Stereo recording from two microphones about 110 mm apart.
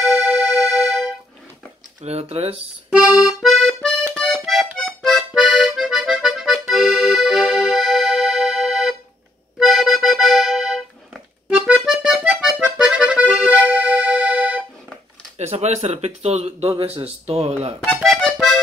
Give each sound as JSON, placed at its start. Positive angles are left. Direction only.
{"t": 0.0, "sound": "music", "side_deg": 0}
{"t": 2.0, "sound": "speech", "side_deg": -70}
{"t": 2.9, "sound": "accordion", "side_deg": -10}
{"t": 6.7, "sound": "music", "side_deg": 0}
{"t": 9.6, "sound": "accordion", "side_deg": 0}
{"t": 15.3, "sound": "speech", "side_deg": -75}
{"t": 17.8, "sound": "accordion", "side_deg": 5}